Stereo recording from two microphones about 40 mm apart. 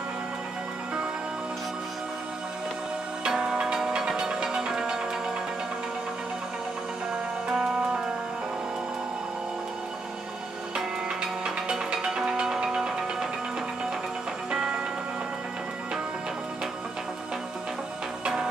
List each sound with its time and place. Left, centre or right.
3.3 s music: centre
7.4 s music: centre
10.7 s music: centre
14.5 s music: centre
18.2 s music: right